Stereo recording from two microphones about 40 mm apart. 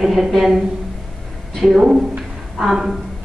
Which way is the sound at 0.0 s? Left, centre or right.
Centre.